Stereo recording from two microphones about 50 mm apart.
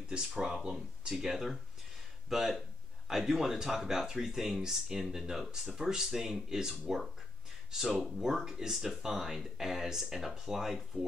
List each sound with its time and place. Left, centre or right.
0.1 s speech: centre